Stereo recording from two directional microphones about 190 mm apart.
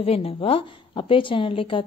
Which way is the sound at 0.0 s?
30° left (ahead or behind).